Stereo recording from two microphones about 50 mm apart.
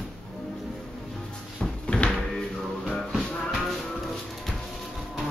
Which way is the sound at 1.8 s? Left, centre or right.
Left.